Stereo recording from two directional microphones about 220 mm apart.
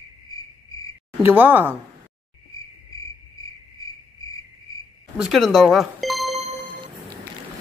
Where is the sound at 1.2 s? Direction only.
10° right (ahead or behind).